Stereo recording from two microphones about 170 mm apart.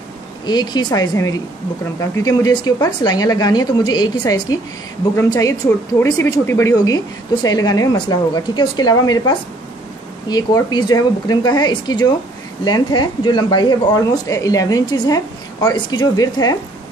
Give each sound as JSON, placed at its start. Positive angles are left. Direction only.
{"t": 0.5, "sound": "speech", "side_deg": 25}